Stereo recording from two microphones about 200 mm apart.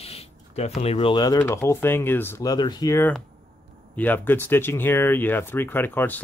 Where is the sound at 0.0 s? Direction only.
30° left (ahead or behind).